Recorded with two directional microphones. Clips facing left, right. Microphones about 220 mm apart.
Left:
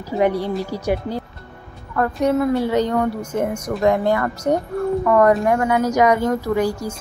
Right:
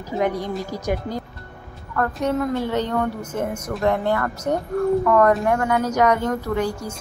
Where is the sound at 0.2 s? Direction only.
10° left (ahead or behind).